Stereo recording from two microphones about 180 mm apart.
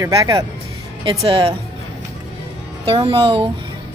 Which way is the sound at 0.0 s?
20° right (ahead or behind).